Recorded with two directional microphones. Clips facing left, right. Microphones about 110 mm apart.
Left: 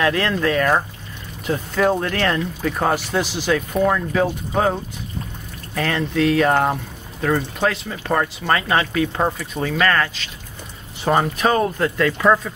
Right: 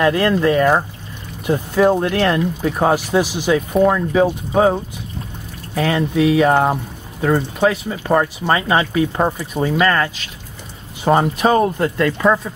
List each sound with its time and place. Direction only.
0.0 s speech: 10° right (ahead or behind)
5.8 s speech: 10° right (ahead or behind)
12.1 s speech: 5° right (ahead or behind)